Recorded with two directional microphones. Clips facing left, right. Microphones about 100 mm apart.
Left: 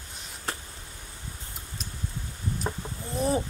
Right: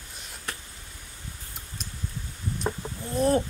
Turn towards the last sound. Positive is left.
turn(degrees=0)  # may be behind; listen again after turning